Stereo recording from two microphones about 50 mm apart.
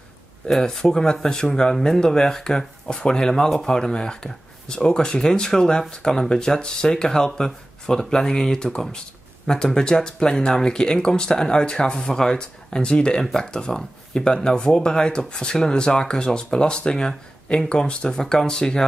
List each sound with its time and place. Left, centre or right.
0.5 s speech: centre